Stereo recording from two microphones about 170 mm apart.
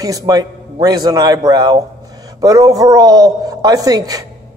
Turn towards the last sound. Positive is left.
turn(degrees=-20)  # may be behind; listen again after turning